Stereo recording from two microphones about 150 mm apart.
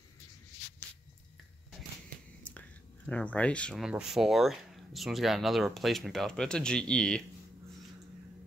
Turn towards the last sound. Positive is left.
turn(degrees=5)  # may be behind; listen again after turning